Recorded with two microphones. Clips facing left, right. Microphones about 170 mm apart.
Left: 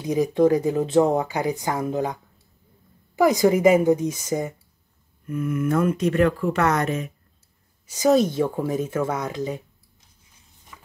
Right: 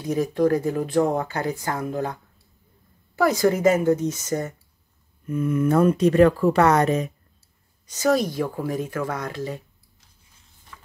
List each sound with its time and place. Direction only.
0.0 s speech: 15° left (ahead or behind)
3.2 s speech: 15° left (ahead or behind)
5.2 s speech: 25° right (ahead or behind)
7.8 s speech: 10° left (ahead or behind)
10.7 s a sound: 10° left (ahead or behind)